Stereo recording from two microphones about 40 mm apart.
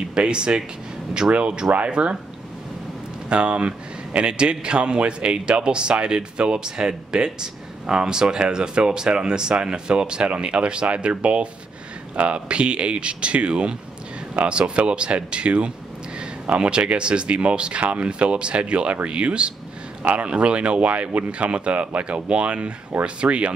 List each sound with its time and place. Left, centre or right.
0.1 s a man's voice: right
3.3 s a man's voice: right